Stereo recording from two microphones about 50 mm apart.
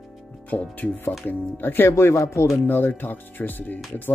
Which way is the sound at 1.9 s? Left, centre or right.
Left.